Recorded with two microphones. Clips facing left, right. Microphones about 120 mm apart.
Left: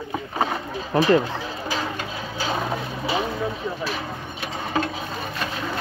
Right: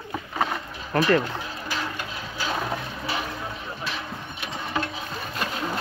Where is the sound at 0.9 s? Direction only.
15° left (ahead or behind).